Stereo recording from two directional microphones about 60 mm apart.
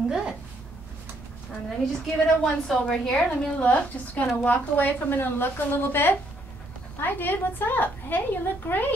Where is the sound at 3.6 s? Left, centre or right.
Left.